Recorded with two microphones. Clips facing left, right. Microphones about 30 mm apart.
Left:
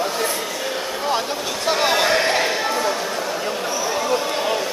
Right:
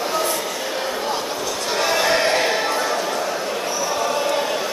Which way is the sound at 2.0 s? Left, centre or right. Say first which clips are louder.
Even; centre.